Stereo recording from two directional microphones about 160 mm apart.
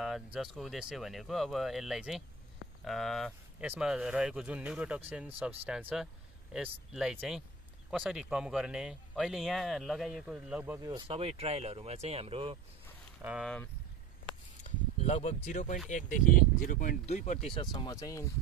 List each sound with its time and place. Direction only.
0.0 s speech: centre (ahead or behind)
10.8 s speech: 25° right (ahead or behind)
11.1 s speech: 40° right (ahead or behind)
13.2 s speech: 10° right (ahead or behind)
14.6 s speech: 45° left (ahead or behind)
17.0 s speech: 45° left (ahead or behind)
17.6 s speech: 25° left (ahead or behind)